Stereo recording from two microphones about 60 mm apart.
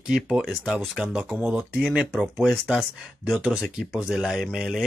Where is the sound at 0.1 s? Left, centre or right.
Centre.